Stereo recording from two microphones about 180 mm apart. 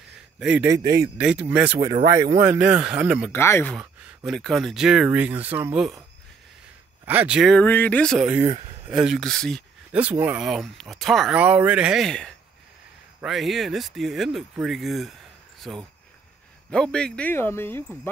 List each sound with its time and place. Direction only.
0.4 s speech: 5° right (ahead or behind)
0.7 s speech: 20° right (ahead or behind)
1.1 s speech: 5° right (ahead or behind)
3.3 s speech: 15° left (ahead or behind)
3.7 s speech: centre (ahead or behind)
7.1 s speech: 10° right (ahead or behind)
8.4 s speech: 35° right (ahead or behind)
8.9 s speech: centre (ahead or behind)
9.9 s speech: 10° right (ahead or behind); by 17.8 s 15° left (ahead or behind)